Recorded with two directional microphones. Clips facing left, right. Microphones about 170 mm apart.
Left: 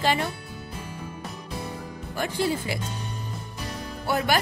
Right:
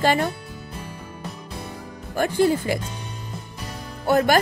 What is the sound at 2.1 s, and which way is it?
Speech, 50° right (ahead or behind).